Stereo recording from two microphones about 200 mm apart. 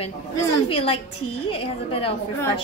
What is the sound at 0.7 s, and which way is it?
A woman's voice, 30° left (ahead or behind).